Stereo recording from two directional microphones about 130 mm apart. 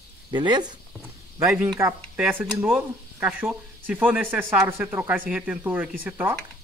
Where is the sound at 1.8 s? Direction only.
25° right (ahead or behind).